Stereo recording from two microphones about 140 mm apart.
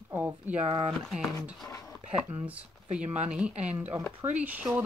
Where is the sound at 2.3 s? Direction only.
10° right (ahead or behind).